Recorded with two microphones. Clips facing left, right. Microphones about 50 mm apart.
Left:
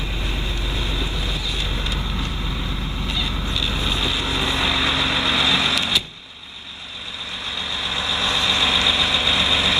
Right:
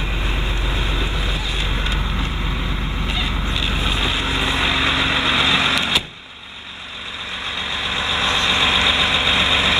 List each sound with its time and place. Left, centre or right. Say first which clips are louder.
0.2 s boat: right 3 dB; right
3.1 s vehicle: right 2 dB; right
7.4 s vehicle: right 3 dB; right